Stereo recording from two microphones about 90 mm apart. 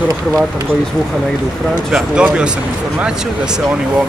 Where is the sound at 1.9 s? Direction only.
10° right (ahead or behind).